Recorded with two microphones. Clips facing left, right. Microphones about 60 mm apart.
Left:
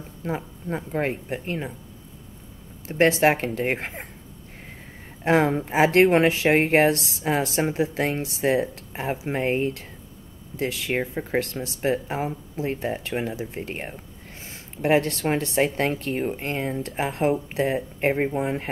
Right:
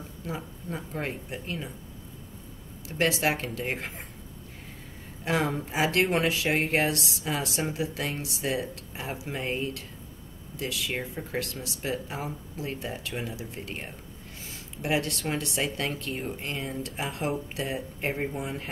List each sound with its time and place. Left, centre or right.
0.2 s speech: left
2.9 s speech: left
5.2 s speech: left